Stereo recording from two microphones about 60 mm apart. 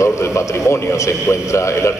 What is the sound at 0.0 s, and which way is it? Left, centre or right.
A man's voice, left.